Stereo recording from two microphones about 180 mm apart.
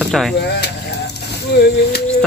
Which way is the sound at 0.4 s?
65° left (ahead or behind).